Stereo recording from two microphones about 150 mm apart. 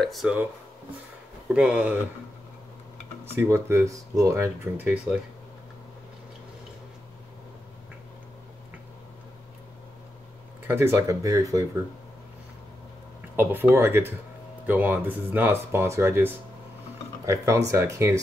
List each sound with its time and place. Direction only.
0.0 s speech: centre (ahead or behind)
1.5 s speech: 5° right (ahead or behind)
3.3 s speech: 15° right (ahead or behind)
4.7 s speech: 10° right (ahead or behind)
10.7 s speech: 15° right (ahead or behind)
13.4 s speech: 15° right (ahead or behind)